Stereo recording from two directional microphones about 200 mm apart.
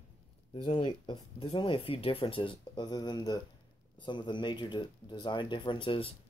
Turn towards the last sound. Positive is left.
turn(degrees=25)  # may be behind; listen again after turning